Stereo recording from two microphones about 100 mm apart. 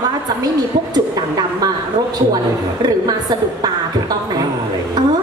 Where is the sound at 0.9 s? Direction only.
40° right (ahead or behind).